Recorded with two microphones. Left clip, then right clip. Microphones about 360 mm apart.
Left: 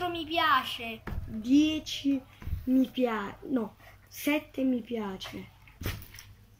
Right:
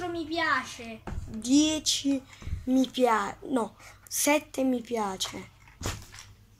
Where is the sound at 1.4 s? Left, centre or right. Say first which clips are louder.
Right 1 dB; centre.